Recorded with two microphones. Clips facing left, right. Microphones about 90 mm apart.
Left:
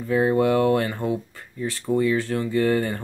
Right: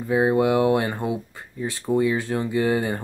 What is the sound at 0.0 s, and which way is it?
Speech, 15° right (ahead or behind).